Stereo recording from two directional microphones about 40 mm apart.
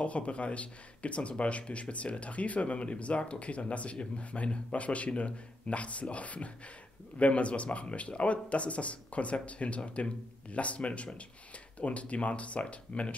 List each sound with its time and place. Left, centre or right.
0.0 s speech: left